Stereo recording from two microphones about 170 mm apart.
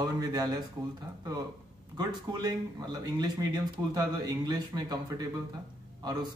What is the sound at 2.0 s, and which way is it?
Speech, 25° right (ahead or behind).